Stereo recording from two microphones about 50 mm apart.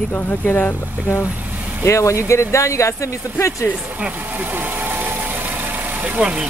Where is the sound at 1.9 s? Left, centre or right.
Left.